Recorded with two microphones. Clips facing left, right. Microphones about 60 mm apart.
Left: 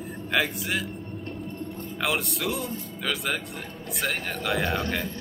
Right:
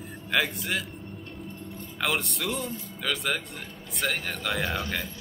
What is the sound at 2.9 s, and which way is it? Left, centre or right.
A man's voice, centre.